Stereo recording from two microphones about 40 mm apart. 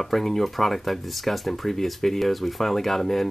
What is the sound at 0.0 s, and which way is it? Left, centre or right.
Speech, centre.